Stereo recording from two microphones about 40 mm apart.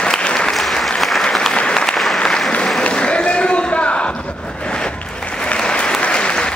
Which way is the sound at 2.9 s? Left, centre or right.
Left.